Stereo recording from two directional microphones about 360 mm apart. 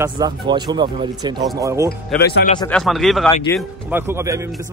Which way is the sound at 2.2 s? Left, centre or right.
Left.